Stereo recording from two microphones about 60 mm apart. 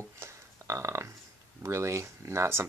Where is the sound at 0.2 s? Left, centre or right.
Right.